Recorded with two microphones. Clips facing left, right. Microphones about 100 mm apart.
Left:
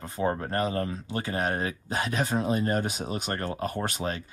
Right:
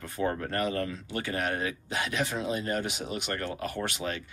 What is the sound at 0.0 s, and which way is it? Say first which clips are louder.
Speech: left 2 dB; 25° left (ahead or behind).